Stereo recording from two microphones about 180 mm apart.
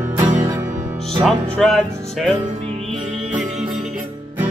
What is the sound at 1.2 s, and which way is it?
Music, centre (ahead or behind).